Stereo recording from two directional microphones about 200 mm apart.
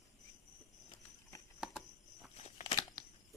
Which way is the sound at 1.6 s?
Centre (ahead or behind).